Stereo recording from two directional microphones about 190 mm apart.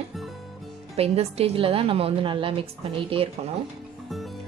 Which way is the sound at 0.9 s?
30° right (ahead or behind).